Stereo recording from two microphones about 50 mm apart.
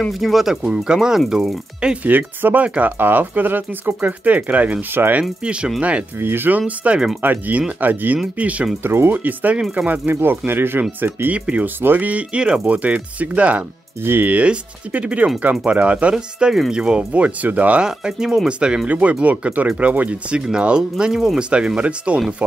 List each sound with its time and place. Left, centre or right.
0.2 s speech: centre
2.0 s speech: right
5.0 s speech: right
5.4 s speech: right
6.1 s speech: right
6.8 s speech: right
8.8 s speech: right
9.1 s speech: right
11.2 s speech: right
11.8 s speech: right
12.1 s speech: right
17.8 s speech: centre
18.9 s speech: right